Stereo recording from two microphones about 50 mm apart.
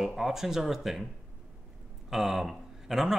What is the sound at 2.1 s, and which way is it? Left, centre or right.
Speech, centre.